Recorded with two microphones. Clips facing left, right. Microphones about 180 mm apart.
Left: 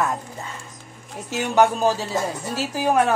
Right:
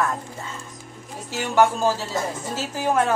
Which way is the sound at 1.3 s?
20° left (ahead or behind).